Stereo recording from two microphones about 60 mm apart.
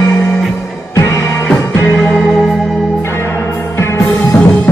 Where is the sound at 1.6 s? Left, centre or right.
Left.